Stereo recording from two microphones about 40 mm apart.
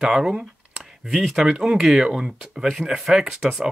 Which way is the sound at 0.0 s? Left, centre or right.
Centre.